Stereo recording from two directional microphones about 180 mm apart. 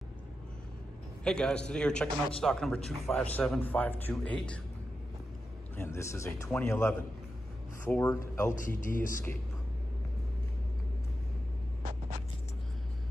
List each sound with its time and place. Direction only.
1.2 s a man's voice: 5° left (ahead or behind)
5.8 s a man's voice: 15° left (ahead or behind)
8.5 s a man's voice: 45° left (ahead or behind)